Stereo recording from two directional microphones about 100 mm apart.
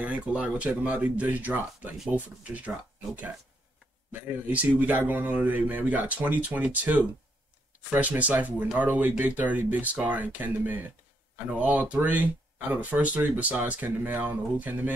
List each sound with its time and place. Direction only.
0.0 s speech: 10° right (ahead or behind)
4.1 s speech: 15° right (ahead or behind)